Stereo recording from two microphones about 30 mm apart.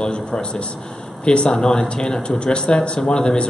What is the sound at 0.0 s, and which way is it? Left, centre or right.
A man's voice, left.